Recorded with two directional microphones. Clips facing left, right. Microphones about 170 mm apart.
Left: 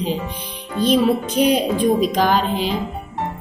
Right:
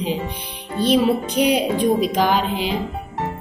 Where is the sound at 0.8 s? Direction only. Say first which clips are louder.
Left 1 dB; 15° right (ahead or behind).